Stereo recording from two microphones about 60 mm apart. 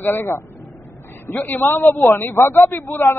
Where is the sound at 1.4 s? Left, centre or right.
Left.